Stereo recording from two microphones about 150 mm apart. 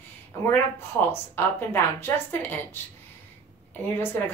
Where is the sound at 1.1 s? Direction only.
15° left (ahead or behind).